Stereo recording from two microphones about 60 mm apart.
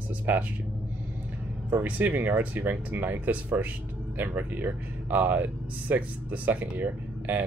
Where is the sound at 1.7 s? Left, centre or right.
Right.